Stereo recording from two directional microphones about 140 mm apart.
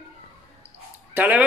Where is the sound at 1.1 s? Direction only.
10° right (ahead or behind).